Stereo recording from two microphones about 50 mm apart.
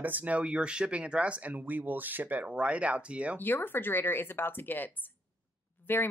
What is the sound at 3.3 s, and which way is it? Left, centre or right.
Speech, left.